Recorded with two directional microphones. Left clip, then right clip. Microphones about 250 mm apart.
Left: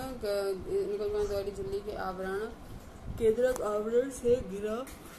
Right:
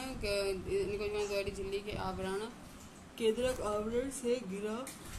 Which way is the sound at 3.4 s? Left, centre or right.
Centre.